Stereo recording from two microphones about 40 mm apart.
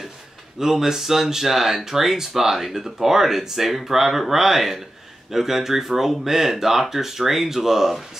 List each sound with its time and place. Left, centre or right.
0.6 s speech: centre